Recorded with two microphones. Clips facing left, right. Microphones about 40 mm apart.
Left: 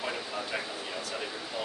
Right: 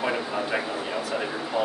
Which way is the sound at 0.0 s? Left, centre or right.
Right.